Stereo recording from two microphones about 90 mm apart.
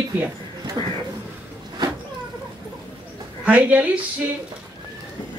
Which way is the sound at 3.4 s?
15° right (ahead or behind).